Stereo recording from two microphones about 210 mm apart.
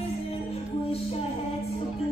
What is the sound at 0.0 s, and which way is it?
Music, 30° left (ahead or behind).